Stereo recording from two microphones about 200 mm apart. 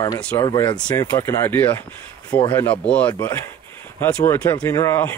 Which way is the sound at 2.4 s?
25° left (ahead or behind).